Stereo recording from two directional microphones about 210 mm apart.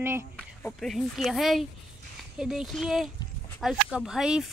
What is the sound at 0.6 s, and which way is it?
Speech, centre (ahead or behind).